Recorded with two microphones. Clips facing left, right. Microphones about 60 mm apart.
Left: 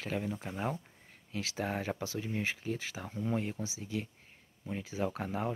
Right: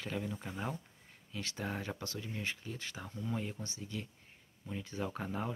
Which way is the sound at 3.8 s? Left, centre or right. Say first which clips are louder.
Left 5 dB; left.